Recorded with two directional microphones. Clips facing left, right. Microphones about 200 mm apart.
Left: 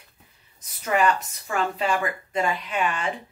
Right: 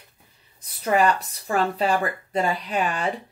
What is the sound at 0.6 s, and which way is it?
Speech, 35° right (ahead or behind).